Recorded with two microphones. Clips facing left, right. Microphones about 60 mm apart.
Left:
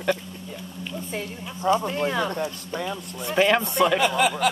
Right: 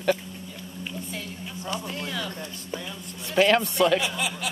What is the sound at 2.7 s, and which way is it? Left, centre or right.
Speech, left.